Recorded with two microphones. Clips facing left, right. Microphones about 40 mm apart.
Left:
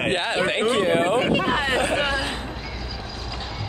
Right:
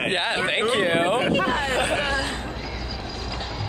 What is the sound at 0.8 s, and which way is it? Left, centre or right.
Speech, centre.